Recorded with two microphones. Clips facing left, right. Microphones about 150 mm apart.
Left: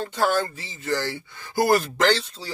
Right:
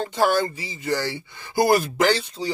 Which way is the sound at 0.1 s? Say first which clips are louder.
Right 2 dB; 10° right (ahead or behind).